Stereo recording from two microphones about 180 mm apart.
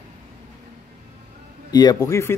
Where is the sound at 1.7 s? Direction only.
20° left (ahead or behind).